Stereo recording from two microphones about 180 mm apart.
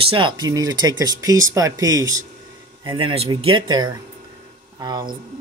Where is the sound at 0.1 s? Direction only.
25° right (ahead or behind).